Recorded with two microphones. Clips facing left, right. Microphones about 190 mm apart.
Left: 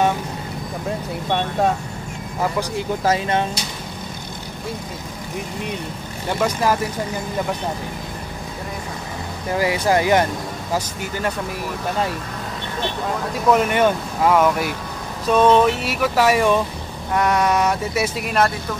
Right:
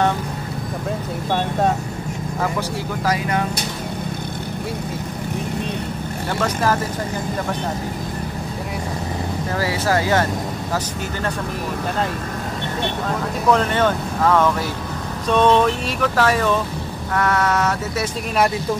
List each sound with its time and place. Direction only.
0.8 s speech: centre (ahead or behind)
3.1 s speech: 25° left (ahead or behind)
6.4 s speech: 10° left (ahead or behind)
9.5 s speech: 15° left (ahead or behind)
13.5 s speech: 10° left (ahead or behind)